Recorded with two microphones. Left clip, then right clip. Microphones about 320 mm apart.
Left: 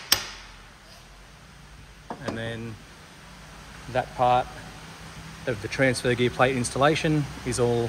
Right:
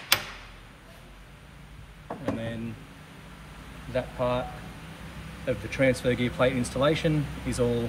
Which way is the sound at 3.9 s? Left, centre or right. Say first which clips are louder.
Left 6 dB; left.